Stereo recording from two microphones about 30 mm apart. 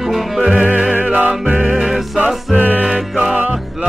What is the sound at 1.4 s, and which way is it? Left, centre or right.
Music, right.